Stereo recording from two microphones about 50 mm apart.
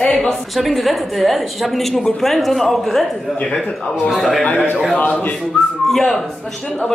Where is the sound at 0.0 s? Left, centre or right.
Centre.